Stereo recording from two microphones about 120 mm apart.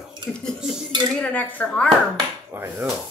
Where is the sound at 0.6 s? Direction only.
5° right (ahead or behind).